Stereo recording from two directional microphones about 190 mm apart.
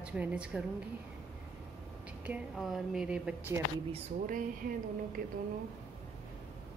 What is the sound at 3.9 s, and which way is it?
Speech, 45° right (ahead or behind).